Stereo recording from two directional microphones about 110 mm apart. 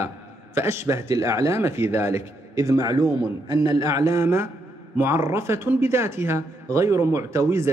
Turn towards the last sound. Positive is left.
turn(degrees=-25)  # may be behind; listen again after turning